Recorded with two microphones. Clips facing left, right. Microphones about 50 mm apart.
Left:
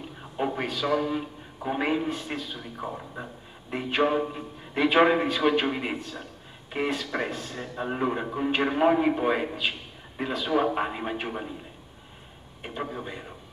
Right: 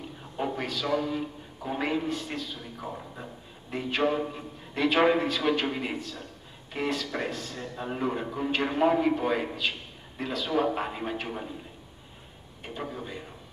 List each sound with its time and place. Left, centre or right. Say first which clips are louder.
0.4 s a man's voice: left 3 dB; centre
12.6 s a man's voice: left 3 dB; centre